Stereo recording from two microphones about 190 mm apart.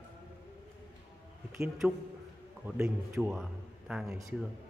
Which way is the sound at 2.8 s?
10° right (ahead or behind).